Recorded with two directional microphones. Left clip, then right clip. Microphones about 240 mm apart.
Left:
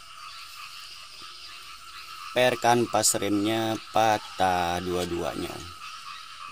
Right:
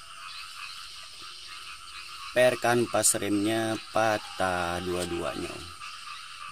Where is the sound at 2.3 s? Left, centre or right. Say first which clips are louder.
Left 1 dB; centre.